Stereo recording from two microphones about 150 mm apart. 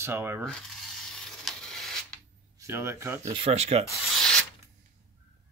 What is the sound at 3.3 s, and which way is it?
Speech, 40° right (ahead or behind).